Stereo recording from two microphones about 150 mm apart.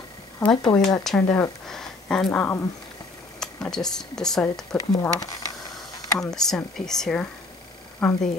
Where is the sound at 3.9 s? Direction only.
5° left (ahead or behind).